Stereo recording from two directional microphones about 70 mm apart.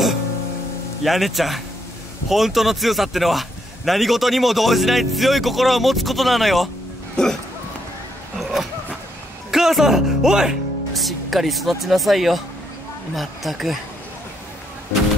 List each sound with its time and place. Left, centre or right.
1.0 s a man's voice: centre
8.4 s a sound: centre
9.5 s a man's voice: centre